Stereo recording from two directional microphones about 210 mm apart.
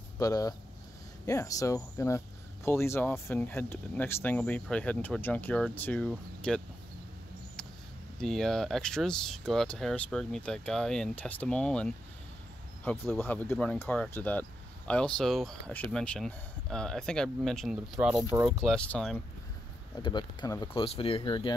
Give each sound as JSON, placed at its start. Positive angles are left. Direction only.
{"t": 0.2, "sound": "speech", "side_deg": 15}
{"t": 8.2, "sound": "speech", "side_deg": 0}
{"t": 20.0, "sound": "speech", "side_deg": 20}
{"t": 20.8, "sound": "speech", "side_deg": 25}